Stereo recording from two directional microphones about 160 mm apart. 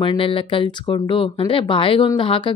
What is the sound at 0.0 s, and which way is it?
Speech, 30° left (ahead or behind).